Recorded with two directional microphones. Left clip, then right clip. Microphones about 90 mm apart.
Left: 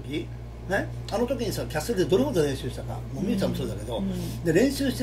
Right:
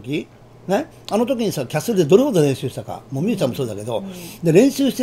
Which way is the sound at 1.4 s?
45° right (ahead or behind).